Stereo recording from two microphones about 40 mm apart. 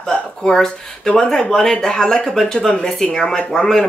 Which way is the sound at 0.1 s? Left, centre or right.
Centre.